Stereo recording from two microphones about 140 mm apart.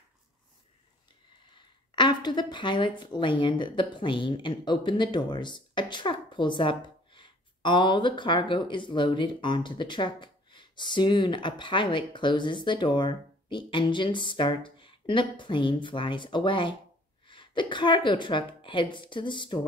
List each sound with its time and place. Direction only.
2.0 s speech: 35° left (ahead or behind)